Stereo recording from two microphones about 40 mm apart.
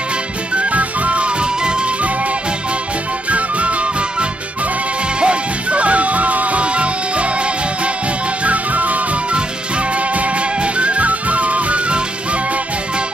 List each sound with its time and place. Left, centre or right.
0.6 s music: right
3.3 s music: right